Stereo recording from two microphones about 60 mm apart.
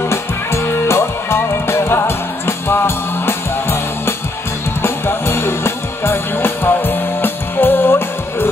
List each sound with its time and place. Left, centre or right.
0.1 s music: left